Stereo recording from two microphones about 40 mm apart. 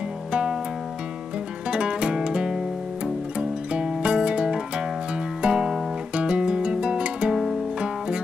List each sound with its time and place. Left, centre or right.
0.3 s music: right
1.7 s music: right
6.1 s music: right